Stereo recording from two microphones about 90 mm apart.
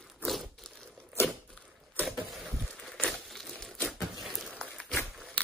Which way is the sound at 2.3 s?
5° right (ahead or behind).